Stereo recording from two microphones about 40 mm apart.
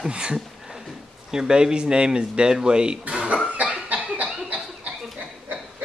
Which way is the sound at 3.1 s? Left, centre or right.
Right.